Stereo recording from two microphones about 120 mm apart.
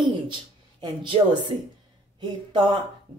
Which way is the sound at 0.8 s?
40° right (ahead or behind).